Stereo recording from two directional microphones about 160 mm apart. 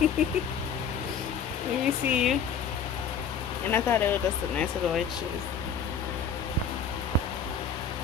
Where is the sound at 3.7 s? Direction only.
15° left (ahead or behind).